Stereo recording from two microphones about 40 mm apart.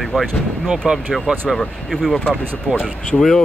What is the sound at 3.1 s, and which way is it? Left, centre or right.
Speech, left.